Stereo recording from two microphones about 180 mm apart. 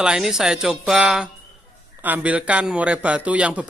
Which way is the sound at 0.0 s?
5° right (ahead or behind).